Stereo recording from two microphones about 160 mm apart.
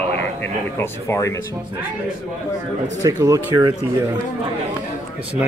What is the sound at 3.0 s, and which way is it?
Speech, 20° right (ahead or behind).